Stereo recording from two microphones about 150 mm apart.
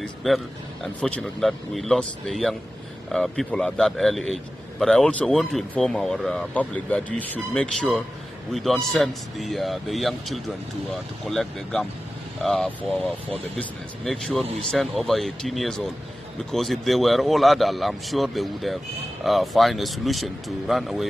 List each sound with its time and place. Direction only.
0.0 s a man's voice: centre (ahead or behind)